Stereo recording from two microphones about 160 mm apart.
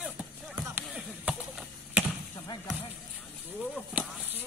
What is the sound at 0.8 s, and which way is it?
Basketball bounce, 5° right (ahead or behind).